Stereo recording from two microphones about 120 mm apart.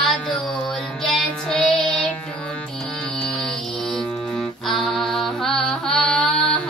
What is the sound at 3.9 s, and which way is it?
Music, 5° left (ahead or behind).